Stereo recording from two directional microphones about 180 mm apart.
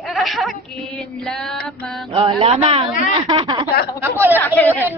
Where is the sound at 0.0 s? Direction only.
Centre (ahead or behind).